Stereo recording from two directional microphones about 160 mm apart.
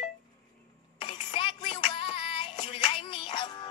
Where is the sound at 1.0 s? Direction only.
30° left (ahead or behind).